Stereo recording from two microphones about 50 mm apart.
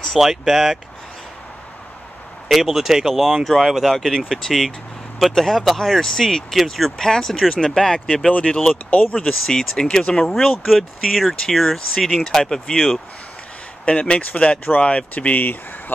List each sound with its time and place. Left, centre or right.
0.2 s speech: centre
2.4 s speech: centre
8.3 s speech: left
9.5 s speech: centre
10.7 s speech: centre
13.8 s speech: left